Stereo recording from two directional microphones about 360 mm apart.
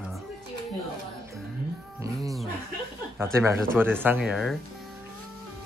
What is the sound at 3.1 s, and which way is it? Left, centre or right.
Speech, centre.